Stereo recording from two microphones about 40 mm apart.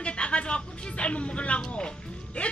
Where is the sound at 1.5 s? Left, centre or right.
Left.